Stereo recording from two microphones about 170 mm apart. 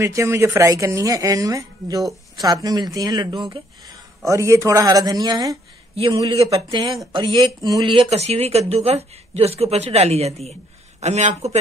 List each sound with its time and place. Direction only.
0.0 s a woman's voice: 15° right (ahead or behind)
5.9 s speech: 35° right (ahead or behind)